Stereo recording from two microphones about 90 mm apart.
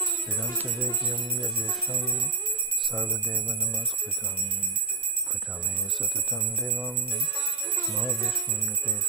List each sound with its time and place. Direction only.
0.3 s speech: 10° left (ahead or behind)
0.7 s music: 10° right (ahead or behind)
1.1 s jingle bell: centre (ahead or behind)
6.3 s jingle bell: centre (ahead or behind)